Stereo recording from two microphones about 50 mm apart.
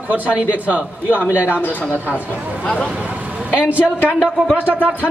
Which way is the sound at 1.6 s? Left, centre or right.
Left.